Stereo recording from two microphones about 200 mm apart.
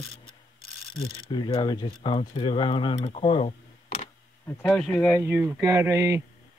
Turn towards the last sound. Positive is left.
turn(degrees=-15)  # may be behind; listen again after turning